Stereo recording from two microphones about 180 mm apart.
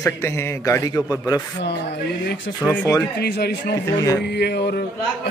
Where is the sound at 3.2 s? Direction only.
65° left (ahead or behind).